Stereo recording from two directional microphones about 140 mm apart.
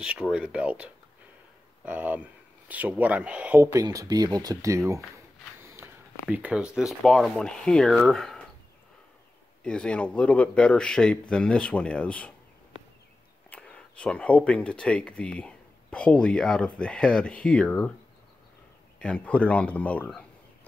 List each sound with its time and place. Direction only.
0.0 s speech: 5° right (ahead or behind)
3.6 s speech: 25° right (ahead or behind)
5.6 s walk: 15° right (ahead or behind)
6.2 s speech: 10° right (ahead or behind)
9.6 s speech: 5° left (ahead or behind)
13.5 s speech: 10° left (ahead or behind)
18.9 s speech: 10° left (ahead or behind)